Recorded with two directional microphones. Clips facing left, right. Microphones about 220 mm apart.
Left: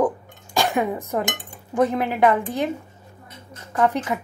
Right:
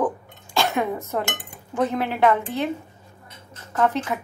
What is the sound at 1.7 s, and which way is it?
Speech, 15° left (ahead or behind).